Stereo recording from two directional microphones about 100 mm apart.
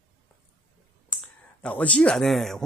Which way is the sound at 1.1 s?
10° left (ahead or behind).